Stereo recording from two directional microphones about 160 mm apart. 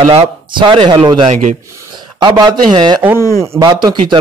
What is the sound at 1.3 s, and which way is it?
Speech, 50° right (ahead or behind).